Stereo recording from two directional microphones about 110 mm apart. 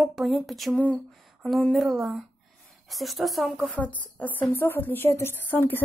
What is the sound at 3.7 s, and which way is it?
A woman's voice, 15° left (ahead or behind).